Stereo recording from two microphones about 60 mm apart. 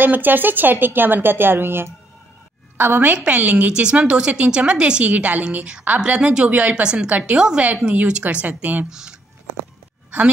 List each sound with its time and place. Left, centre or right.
0.0 s a woman's voice: right